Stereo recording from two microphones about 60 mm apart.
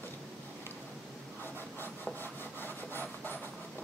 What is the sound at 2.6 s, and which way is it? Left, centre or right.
Wood, left.